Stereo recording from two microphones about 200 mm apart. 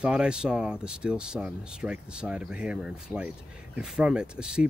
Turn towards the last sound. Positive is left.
turn(degrees=-5)  # may be behind; listen again after turning